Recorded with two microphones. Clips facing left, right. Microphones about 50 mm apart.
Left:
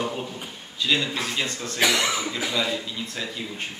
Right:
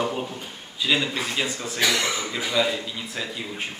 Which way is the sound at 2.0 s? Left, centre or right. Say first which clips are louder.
Left 1 dB; centre.